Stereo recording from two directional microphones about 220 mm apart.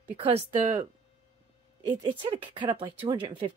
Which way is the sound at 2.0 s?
25° right (ahead or behind).